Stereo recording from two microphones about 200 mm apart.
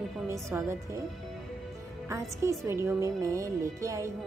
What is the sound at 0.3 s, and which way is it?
Speech, 15° right (ahead or behind).